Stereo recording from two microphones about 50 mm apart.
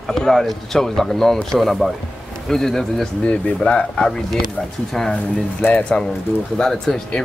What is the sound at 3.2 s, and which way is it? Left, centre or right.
Speech, left.